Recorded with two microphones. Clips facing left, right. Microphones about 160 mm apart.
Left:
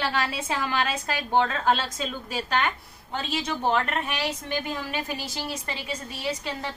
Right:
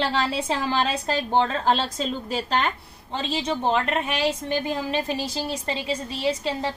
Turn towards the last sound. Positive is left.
turn(degrees=-25)  # may be behind; listen again after turning